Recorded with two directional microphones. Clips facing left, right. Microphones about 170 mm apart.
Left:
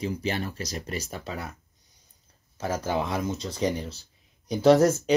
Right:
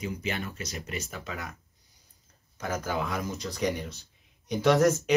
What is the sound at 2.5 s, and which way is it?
Speech, 30° left (ahead or behind).